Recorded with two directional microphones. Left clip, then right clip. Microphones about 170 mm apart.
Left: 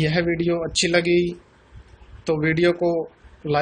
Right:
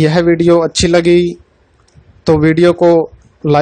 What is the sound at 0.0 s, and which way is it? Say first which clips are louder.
Speech: right 11 dB; 60° right (ahead or behind).